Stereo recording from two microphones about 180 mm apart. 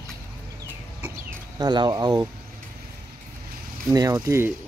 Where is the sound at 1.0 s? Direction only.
15° right (ahead or behind).